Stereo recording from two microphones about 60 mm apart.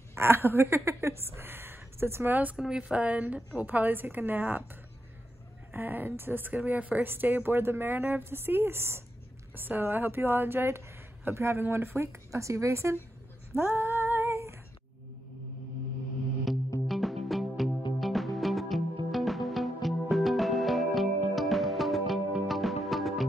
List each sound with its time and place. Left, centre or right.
0.1 s speech: right
2.5 s a woman's voice: centre; by 4.6 s right
5.7 s a woman's voice: right
9.6 s a woman's voice: right
12.3 s speech: right
13.6 s female singing: right
16.8 s music: centre